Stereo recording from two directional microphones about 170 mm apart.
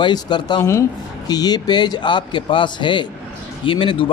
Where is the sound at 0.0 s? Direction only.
25° left (ahead or behind).